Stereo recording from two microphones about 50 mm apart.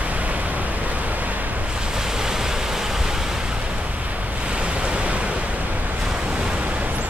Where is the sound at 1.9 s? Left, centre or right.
Centre.